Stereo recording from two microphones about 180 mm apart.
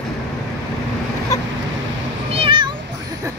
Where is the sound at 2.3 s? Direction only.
30° right (ahead or behind).